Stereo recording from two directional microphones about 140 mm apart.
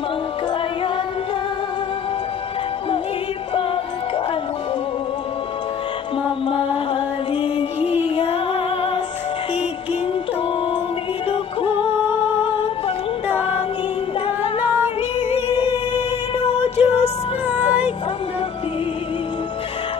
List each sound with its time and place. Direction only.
6.4 s music: 40° left (ahead or behind)
12.4 s music: 45° left (ahead or behind)
15.1 s music: 45° left (ahead or behind)
17.5 s music: 10° right (ahead or behind)